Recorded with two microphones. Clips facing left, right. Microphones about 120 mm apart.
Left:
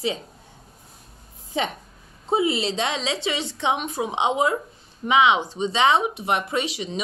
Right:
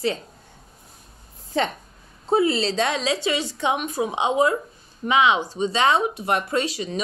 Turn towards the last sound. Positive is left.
turn(degrees=20)  # may be behind; listen again after turning